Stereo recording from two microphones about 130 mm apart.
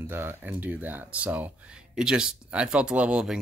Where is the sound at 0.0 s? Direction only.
15° right (ahead or behind).